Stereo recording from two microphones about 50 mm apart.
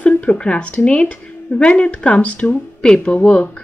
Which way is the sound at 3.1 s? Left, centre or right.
Left.